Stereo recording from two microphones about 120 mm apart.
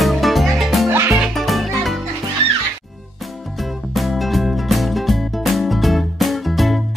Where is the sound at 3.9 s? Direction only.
Centre (ahead or behind).